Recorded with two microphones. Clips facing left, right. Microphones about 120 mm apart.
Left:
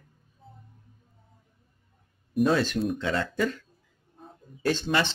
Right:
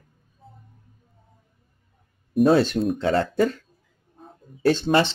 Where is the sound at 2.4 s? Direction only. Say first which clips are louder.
Right 6 dB; 30° right (ahead or behind).